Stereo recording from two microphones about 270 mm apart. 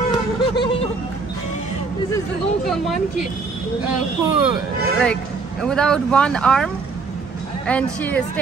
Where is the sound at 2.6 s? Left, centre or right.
Centre.